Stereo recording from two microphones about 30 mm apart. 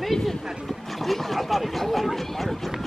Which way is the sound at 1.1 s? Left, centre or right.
Centre.